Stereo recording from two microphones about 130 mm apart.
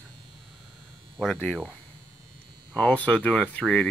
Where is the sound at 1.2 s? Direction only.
5° left (ahead or behind).